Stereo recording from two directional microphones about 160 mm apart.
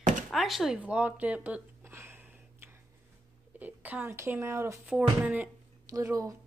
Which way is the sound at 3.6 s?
10° right (ahead or behind).